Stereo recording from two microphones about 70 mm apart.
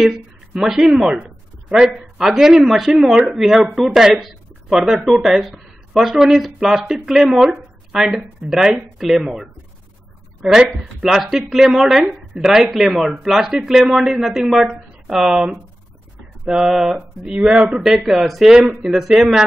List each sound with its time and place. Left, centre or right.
0.0 s speech: centre
17.7 s speech: centre